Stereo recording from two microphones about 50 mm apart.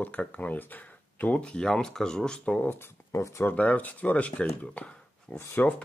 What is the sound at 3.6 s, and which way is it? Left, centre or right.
Speech, left.